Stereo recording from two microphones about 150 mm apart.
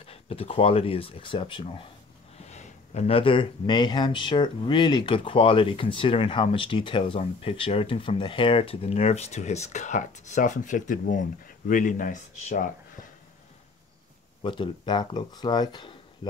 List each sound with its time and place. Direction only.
0.0 s speech: 40° left (ahead or behind)
2.3 s speech: 50° left (ahead or behind)
14.4 s speech: 35° left (ahead or behind)